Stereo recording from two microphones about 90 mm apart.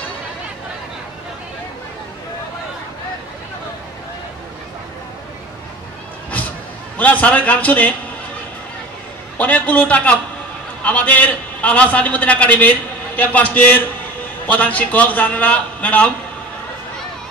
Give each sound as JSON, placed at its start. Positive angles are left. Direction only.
{"t": 7.0, "sound": "a man's voice", "side_deg": 15}
{"t": 9.4, "sound": "a man's voice", "side_deg": 15}